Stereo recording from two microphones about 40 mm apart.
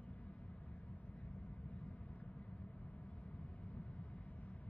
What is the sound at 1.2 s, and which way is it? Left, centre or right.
Vehicle, left.